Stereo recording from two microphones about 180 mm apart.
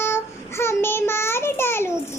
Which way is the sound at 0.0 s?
15° left (ahead or behind).